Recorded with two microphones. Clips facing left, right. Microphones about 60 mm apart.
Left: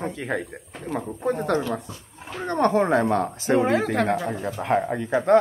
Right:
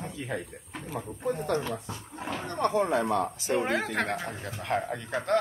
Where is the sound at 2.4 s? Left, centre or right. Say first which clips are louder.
Left 7 dB; left.